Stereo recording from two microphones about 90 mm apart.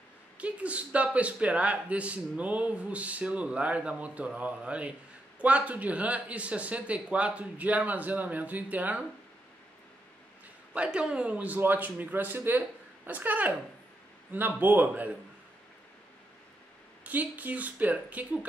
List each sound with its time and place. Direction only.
0.4 s a man's voice: 15° right (ahead or behind)
10.7 s a man's voice: 10° right (ahead or behind)
17.0 s a man's voice: 20° right (ahead or behind)